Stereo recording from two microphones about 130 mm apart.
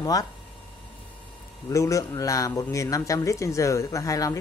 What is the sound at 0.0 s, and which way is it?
Speech, 30° left (ahead or behind).